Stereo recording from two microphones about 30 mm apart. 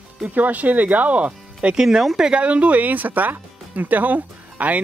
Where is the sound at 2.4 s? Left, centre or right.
Right.